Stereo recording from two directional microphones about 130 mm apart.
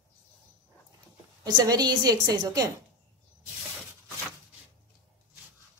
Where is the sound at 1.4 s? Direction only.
30° right (ahead or behind).